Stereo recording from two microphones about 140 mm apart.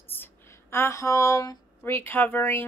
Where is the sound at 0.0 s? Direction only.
15° left (ahead or behind).